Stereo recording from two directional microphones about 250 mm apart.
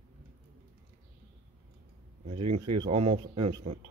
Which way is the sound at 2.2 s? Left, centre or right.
Right.